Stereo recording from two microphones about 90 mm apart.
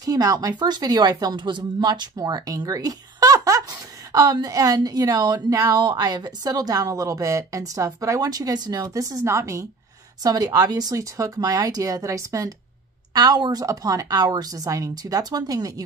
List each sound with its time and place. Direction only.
0.0 s a woman's voice: 40° right (ahead or behind)
10.2 s a woman's voice: 45° right (ahead or behind)